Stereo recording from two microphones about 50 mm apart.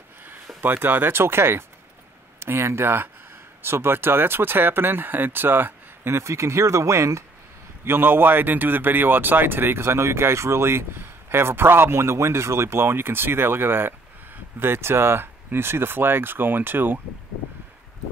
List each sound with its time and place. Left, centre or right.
0.6 s speech: right
6.1 s speech: right
7.8 s speech: right